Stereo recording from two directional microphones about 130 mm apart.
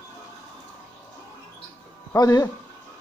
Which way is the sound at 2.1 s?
30° left (ahead or behind).